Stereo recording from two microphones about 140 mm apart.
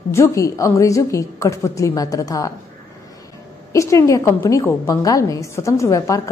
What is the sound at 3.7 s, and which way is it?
A woman's voice, 20° left (ahead or behind).